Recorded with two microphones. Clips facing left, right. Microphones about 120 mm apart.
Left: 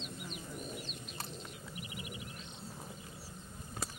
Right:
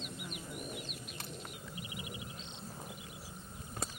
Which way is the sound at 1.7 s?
25° right (ahead or behind).